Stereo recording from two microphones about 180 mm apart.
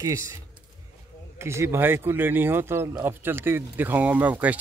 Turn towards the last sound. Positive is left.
turn(degrees=-10)  # may be behind; listen again after turning